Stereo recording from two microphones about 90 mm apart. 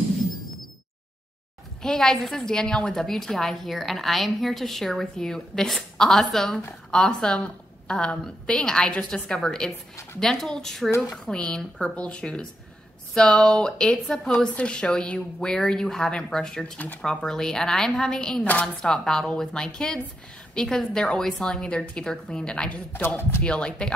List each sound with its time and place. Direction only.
1.8 s a woman's voice: 5° left (ahead or behind)
23.0 s speech: 25° left (ahead or behind)
23.4 s a woman's voice: 10° left (ahead or behind)